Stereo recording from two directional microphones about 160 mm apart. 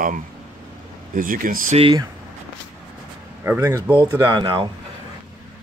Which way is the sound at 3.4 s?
15° right (ahead or behind).